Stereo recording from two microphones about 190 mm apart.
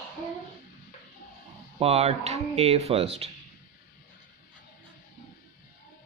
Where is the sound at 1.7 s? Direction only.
35° right (ahead or behind).